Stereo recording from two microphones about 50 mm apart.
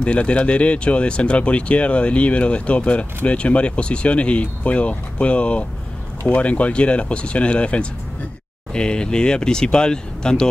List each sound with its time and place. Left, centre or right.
0.0 s speech: left